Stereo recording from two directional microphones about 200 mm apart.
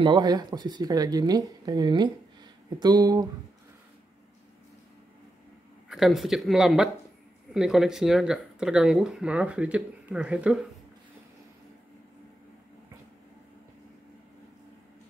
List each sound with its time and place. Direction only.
0.0 s speech: 20° right (ahead or behind)
5.9 s speech: centre (ahead or behind)